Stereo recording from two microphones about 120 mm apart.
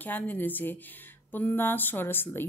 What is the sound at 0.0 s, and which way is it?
Speech, 15° left (ahead or behind).